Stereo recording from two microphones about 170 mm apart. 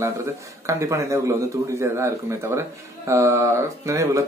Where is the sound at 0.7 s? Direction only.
15° right (ahead or behind).